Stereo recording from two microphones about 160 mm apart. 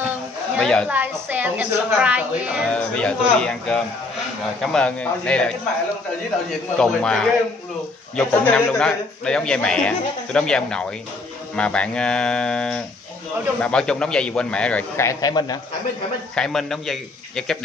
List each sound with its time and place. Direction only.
0.6 s a man's voice: 5° left (ahead or behind)
0.8 s a woman's voice: 10° right (ahead or behind)
2.7 s a man's voice: 5° left (ahead or behind)
6.8 s a man's voice: 5° left (ahead or behind)
15.0 s a man's voice: 25° left (ahead or behind)
16.3 s a man's voice: 5° left (ahead or behind)